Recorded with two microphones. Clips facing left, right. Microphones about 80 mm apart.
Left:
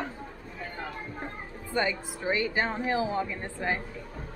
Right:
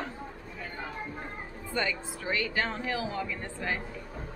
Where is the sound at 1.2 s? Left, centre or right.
Left.